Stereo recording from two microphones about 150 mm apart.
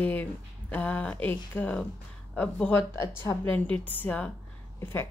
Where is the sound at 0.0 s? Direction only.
10° left (ahead or behind).